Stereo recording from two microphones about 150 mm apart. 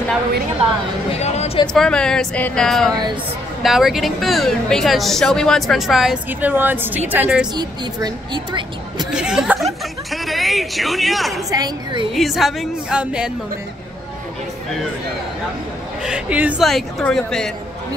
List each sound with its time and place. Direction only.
1.1 s a sound: 45° left (ahead or behind)
1.7 s a woman's voice: 5° left (ahead or behind)
6.5 s speech: 15° right (ahead or behind)
7.5 s a woman's voice: 30° right (ahead or behind)
9.1 s speech: 5° right (ahead or behind)
11.5 s a woman's voice: 30° right (ahead or behind)
12.1 s a woman's voice: centre (ahead or behind)
16.0 s speech: 5° right (ahead or behind)
16.6 s a woman's voice: 5° left (ahead or behind)